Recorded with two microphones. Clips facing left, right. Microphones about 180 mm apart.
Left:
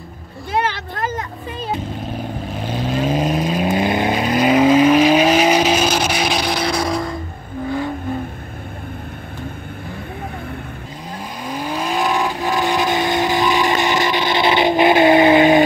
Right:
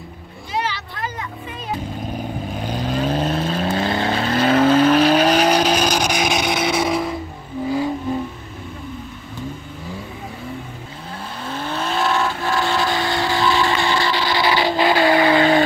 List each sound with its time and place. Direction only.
0.5 s vehicle: 55° left (ahead or behind)
2.5 s vehicle: 5° left (ahead or behind)
11.4 s vehicle: 15° left (ahead or behind)